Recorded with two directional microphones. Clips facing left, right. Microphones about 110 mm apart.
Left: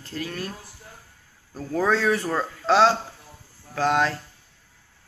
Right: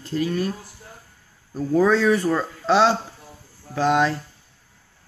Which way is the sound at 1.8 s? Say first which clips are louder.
Right 3 dB; 5° left (ahead or behind).